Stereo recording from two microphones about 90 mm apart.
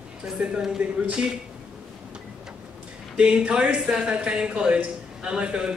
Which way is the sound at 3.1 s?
10° right (ahead or behind).